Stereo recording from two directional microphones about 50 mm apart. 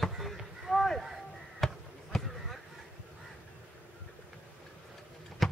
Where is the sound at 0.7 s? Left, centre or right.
Centre.